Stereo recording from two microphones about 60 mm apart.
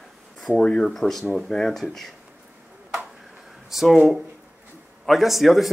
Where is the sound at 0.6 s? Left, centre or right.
Centre.